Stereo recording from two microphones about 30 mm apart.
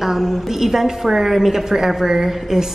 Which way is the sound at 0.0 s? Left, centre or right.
Centre.